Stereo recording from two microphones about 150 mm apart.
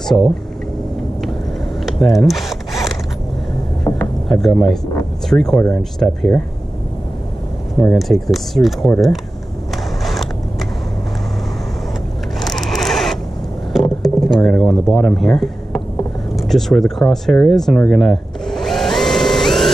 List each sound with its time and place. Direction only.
0.0 s speech: centre (ahead or behind)
1.9 s zipper: centre (ahead or behind)
3.9 s a sound: 15° left (ahead or behind)
4.3 s speech: centre (ahead or behind)
7.8 s speech: centre (ahead or behind)
12.4 s scrape: centre (ahead or behind)
13.7 s a sound: centre (ahead or behind)
16.3 s speech: centre (ahead or behind)
17.1 s vacuum cleaner: centre (ahead or behind)